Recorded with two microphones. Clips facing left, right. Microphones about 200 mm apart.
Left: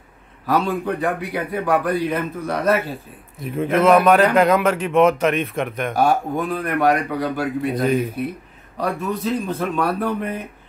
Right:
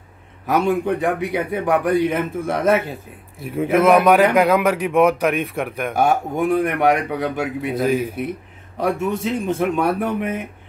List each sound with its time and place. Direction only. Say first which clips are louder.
0.5 s a man's voice: right 2 dB; 20° right (ahead or behind)
3.5 s a man's voice: right 1 dB; 10° right (ahead or behind)
5.9 s a man's voice: right 1 dB; 25° right (ahead or behind)
7.7 s speech: right 2 dB; 5° right (ahead or behind)
8.7 s a man's voice: right 3 dB; 25° right (ahead or behind)